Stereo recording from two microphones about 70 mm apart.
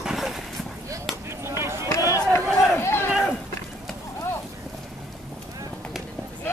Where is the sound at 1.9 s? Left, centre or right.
Left.